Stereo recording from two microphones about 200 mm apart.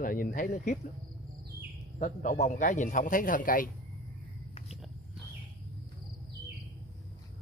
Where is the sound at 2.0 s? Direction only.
40° left (ahead or behind).